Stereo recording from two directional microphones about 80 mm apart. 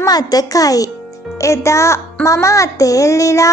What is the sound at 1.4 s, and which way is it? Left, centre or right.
A child's voice, left.